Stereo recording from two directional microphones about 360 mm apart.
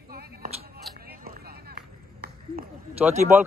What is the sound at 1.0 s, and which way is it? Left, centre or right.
Run, right.